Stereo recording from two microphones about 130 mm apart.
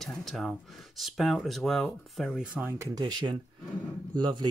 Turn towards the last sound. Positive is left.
turn(degrees=-35)  # may be behind; listen again after turning